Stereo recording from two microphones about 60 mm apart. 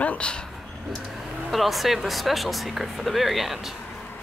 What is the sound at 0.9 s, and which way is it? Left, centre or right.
Vehicle, centre.